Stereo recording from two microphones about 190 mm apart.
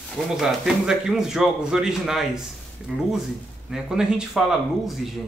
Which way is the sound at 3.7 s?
5° right (ahead or behind).